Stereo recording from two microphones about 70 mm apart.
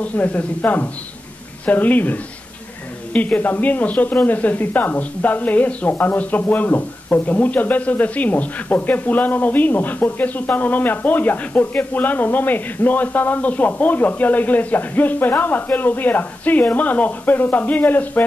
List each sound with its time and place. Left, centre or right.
0.0 s speech: left